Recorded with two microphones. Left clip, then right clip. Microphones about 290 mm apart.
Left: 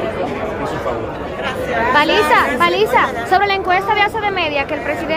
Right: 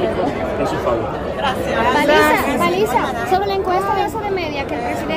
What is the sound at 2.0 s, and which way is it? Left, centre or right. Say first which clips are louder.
A woman's voice: left 2 dB; centre.